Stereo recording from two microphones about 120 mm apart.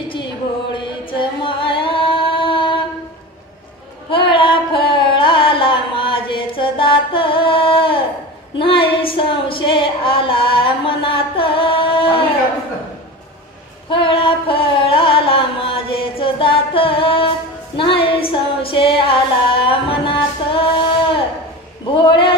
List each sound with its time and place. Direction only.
0.1 s music: 40° left (ahead or behind)
1.4 s singing: 45° left (ahead or behind)
4.1 s a sound: 45° left (ahead or behind)
13.8 s carnatic music: 45° left (ahead or behind)
17.7 s music: 45° left (ahead or behind)
21.9 s a sound: 40° left (ahead or behind)